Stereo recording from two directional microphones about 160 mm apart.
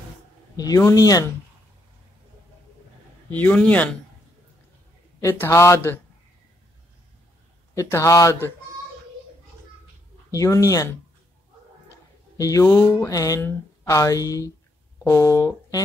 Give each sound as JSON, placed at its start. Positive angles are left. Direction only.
{"t": 0.6, "sound": "speech", "side_deg": 20}
{"t": 3.3, "sound": "a man's voice", "side_deg": 10}
{"t": 5.2, "sound": "a man's voice", "side_deg": 15}
{"t": 7.7, "sound": "a man's voice", "side_deg": 15}
{"t": 10.3, "sound": "speech", "side_deg": 20}
{"t": 12.4, "sound": "speech", "side_deg": 20}